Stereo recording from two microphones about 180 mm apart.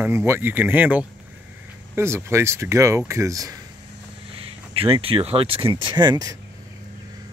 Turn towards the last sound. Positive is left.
turn(degrees=-20)  # may be behind; listen again after turning